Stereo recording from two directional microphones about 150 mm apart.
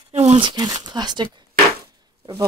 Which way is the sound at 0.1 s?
50° right (ahead or behind).